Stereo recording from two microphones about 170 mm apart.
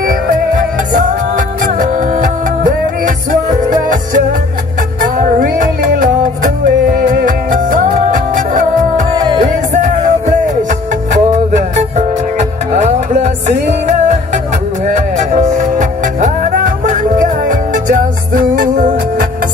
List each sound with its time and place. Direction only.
0.9 s music: 50° right (ahead or behind)
5.4 s music: 50° right (ahead or behind)
9.1 s music: 25° right (ahead or behind)
9.4 s music: 45° right (ahead or behind)
14.9 s music: 45° right (ahead or behind)